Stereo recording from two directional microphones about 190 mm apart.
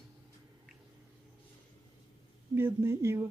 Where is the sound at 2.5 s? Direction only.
15° right (ahead or behind).